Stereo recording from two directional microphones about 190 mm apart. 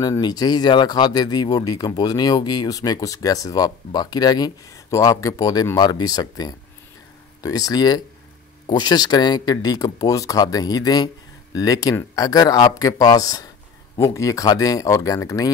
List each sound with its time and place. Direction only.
0.0 s speech: 20° left (ahead or behind)